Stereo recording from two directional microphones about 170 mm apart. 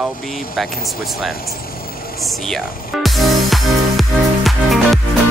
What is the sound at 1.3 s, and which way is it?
Vehicle, 60° left (ahead or behind).